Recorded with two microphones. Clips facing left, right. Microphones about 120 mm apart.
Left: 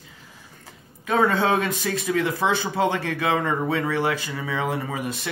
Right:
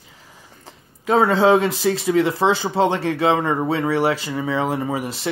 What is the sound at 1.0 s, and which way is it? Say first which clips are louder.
Speech: right 5 dB; 30° right (ahead or behind).